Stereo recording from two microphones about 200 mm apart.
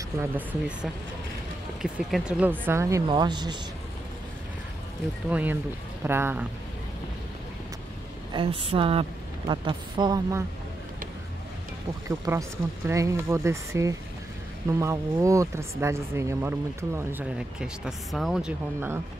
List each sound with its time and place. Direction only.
0.2 s speech: 10° right (ahead or behind)
1.8 s speech: centre (ahead or behind); by 3.5 s 20° right (ahead or behind)
5.3 s speech: 10° right (ahead or behind)
8.3 s speech: 25° right (ahead or behind)
12.3 s speech: 15° right (ahead or behind)